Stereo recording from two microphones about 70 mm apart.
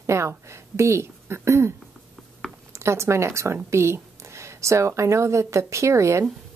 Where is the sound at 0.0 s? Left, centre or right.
Right.